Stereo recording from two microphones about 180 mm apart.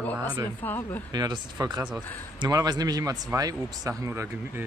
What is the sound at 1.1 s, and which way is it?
A man's voice, 20° right (ahead or behind).